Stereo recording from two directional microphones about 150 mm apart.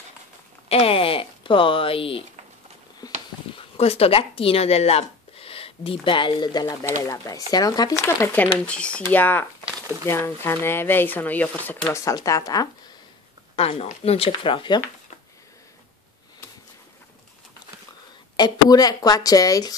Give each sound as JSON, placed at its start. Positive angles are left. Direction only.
{"t": 0.7, "sound": "a sound", "side_deg": 40}
{"t": 3.5, "sound": "a woman's voice", "side_deg": 40}
{"t": 8.5, "sound": "a woman's voice", "side_deg": 5}
{"t": 13.6, "sound": "speech", "side_deg": 40}
{"t": 18.3, "sound": "a woman's voice", "side_deg": 25}